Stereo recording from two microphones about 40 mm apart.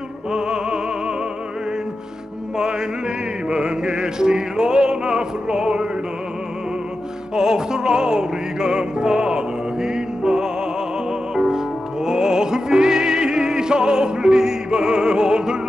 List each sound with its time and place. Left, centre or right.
0.3 s music: right
3.4 s music: centre
7.3 s music: centre